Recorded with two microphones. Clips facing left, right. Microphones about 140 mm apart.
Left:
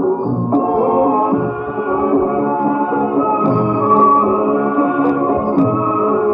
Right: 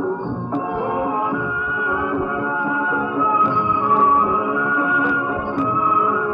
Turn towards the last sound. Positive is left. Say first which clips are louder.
# left 5 dB
turn(degrees=40)  # may be behind; listen again after turning